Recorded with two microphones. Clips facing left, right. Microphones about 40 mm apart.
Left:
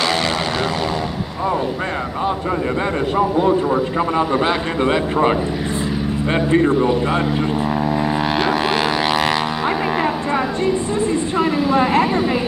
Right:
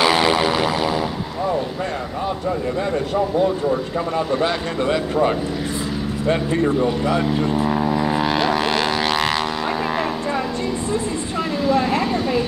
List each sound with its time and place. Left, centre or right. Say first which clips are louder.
0.0 s vehicle: right 3 dB; centre
4.3 s speech: left 2 dB; left
7.6 s speech: even; centre
7.9 s didgeridoo: left 1 dB; centre
11.3 s vehicle: left 2 dB; centre